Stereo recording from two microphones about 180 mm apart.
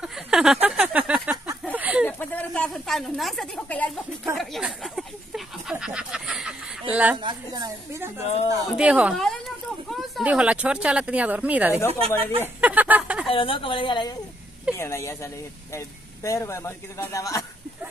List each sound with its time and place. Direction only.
0.0 s a sound: 5° right (ahead or behind)
2.0 s a woman's voice: 10° left (ahead or behind)
4.4 s a sound: centre (ahead or behind)
6.9 s speech: 5° right (ahead or behind)
7.2 s a woman's voice: 20° right (ahead or behind)
8.2 s speech: 35° left (ahead or behind)
8.7 s speech: 5° right (ahead or behind)
12.4 s a sound: 10° right (ahead or behind)
13.3 s a woman's voice: 30° left (ahead or behind)
14.8 s speech: 15° left (ahead or behind)
16.3 s speech: 15° left (ahead or behind)